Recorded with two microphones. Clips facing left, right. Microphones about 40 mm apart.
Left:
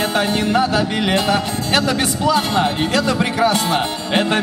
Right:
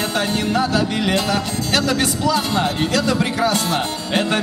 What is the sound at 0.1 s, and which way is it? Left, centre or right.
Music, left.